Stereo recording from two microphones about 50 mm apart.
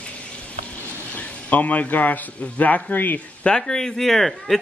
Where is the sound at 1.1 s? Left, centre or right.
Left.